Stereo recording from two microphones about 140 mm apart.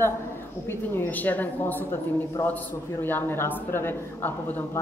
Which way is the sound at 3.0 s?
15° left (ahead or behind).